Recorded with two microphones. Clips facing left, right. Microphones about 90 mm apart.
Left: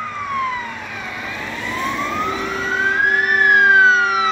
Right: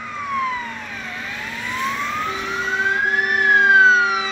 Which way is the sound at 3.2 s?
35° left (ahead or behind).